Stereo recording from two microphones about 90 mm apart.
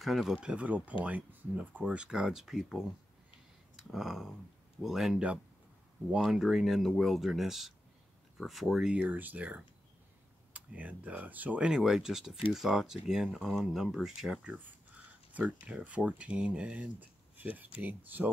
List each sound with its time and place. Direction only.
0.0 s speech: centre (ahead or behind)
0.4 s speech: 15° right (ahead or behind)
8.9 s speech: 20° right (ahead or behind)
11.7 s speech: 5° right (ahead or behind)
15.3 s speech: 15° right (ahead or behind)